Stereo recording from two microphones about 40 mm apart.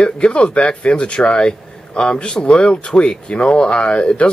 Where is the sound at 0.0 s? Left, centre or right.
Left.